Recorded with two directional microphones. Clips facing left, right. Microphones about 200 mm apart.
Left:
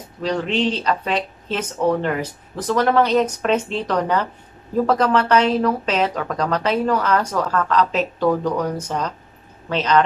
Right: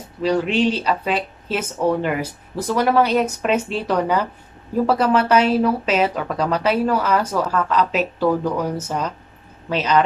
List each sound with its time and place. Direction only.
0.2 s speech: 10° right (ahead or behind)